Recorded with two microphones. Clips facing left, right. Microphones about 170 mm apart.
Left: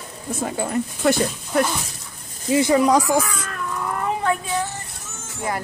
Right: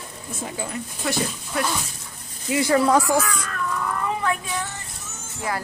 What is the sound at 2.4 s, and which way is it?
Speech, 25° left (ahead or behind).